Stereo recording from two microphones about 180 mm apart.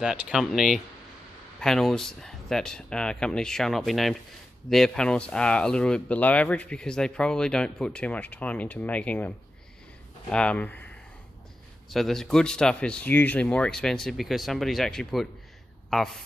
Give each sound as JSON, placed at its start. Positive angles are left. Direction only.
{"t": 0.0, "sound": "speech", "side_deg": -5}
{"t": 10.3, "sound": "speech", "side_deg": 5}
{"t": 11.9, "sound": "a man's voice", "side_deg": 0}